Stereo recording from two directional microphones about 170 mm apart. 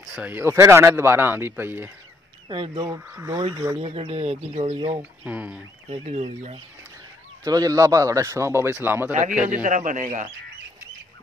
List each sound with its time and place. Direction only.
0.0 s speech: 5° right (ahead or behind)
2.4 s a man's voice: 30° right (ahead or behind)
3.1 s speech: 15° right (ahead or behind)
3.7 s speech: 35° right (ahead or behind)
5.2 s speech: 10° right (ahead or behind)
5.9 s speech: 40° right (ahead or behind)
7.4 s a man's voice: 20° right (ahead or behind)
9.5 s speech: 45° right (ahead or behind)